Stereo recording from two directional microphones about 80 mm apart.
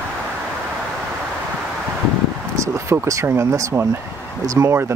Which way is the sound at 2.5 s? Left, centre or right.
Right.